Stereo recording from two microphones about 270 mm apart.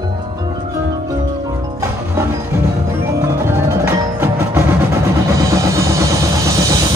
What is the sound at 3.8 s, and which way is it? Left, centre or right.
Tubular bells, centre.